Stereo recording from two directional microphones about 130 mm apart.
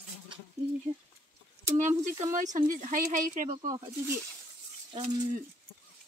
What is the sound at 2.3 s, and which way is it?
Speech, 80° right.